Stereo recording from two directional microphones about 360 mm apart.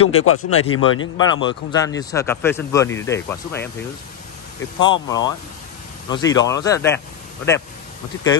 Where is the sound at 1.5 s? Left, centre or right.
Centre.